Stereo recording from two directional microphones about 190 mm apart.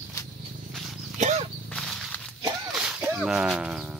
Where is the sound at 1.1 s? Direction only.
40° right (ahead or behind).